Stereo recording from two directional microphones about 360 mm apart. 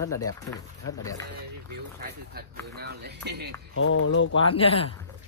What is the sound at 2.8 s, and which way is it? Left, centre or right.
Speech, right.